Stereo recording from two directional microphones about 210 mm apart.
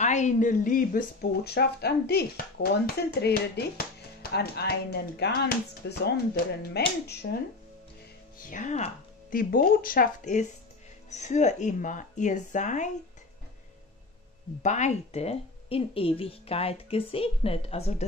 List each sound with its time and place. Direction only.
0.0 s speech: 35° left (ahead or behind); by 7.4 s 55° left (ahead or behind)
8.5 s speech: 35° left (ahead or behind)
14.6 s a woman's voice: 35° left (ahead or behind)